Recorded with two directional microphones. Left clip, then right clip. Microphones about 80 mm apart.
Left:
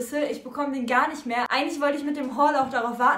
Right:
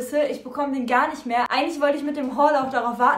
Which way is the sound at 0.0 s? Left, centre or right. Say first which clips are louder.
Right 4 dB; right.